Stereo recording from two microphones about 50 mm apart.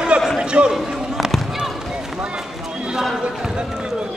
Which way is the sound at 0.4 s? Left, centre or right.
Centre.